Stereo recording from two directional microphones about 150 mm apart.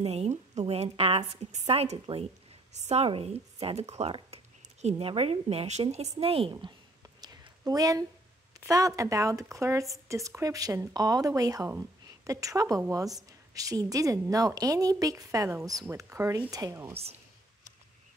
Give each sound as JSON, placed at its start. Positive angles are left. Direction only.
{"t": 0.0, "sound": "a woman's voice", "side_deg": -45}
{"t": 7.2, "sound": "a sound", "side_deg": -25}
{"t": 8.6, "sound": "a woman's voice", "side_deg": -20}
{"t": 16.9, "sound": "a woman's voice", "side_deg": -40}